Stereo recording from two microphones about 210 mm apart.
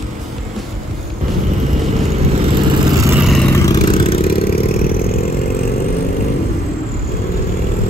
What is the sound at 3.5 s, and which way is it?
Vehicle, 15° left (ahead or behind).